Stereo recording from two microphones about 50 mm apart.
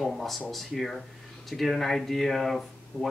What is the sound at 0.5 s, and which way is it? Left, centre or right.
Speech, centre.